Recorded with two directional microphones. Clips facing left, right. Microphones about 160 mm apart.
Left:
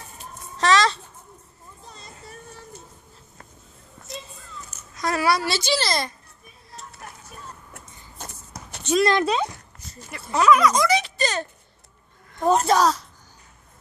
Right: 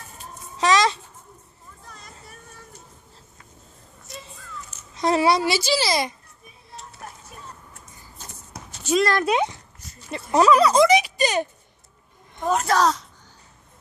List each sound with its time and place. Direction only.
0.6 s a sound: 15° right (ahead or behind)
1.9 s vehicle: 25° left (ahead or behind)
4.9 s a woman's voice: 25° right (ahead or behind)
5.6 s a woman's voice: 5° right (ahead or behind)
8.2 s shuffle: 55° left (ahead or behind)
8.9 s speech: 5° right (ahead or behind)
9.3 s speech: 15° right (ahead or behind)
10.3 s speech: 30° right (ahead or behind)
10.9 s a sound: 15° right (ahead or behind)
12.4 s speech: 30° left (ahead or behind)
12.7 s speech: 5° left (ahead or behind)